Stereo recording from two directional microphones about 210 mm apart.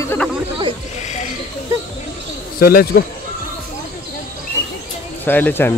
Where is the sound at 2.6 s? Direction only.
45° left (ahead or behind).